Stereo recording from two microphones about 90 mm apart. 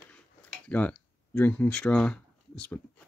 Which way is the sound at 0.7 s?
15° left (ahead or behind).